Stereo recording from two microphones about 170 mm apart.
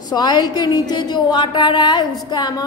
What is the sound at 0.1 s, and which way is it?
A woman's voice, 25° left (ahead or behind).